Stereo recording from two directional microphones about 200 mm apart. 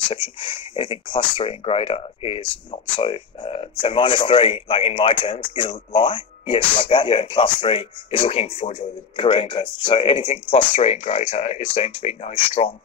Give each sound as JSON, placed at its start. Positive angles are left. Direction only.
{"t": 0.1, "sound": "speech", "side_deg": 25}